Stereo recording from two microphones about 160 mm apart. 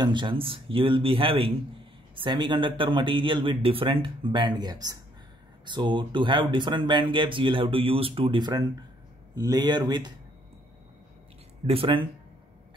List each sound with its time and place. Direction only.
0.0 s speech: 30° right (ahead or behind)
11.6 s speech: 35° right (ahead or behind)